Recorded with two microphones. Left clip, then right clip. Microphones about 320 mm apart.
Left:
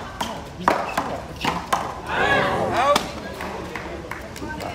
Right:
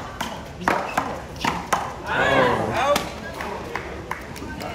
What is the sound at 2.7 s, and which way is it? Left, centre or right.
Basketball bounce, left.